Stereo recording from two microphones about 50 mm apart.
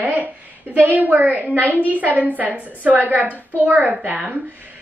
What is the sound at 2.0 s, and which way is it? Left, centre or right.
A woman's voice, right.